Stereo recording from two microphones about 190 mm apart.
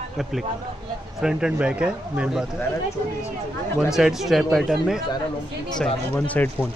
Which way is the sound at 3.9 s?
Centre (ahead or behind).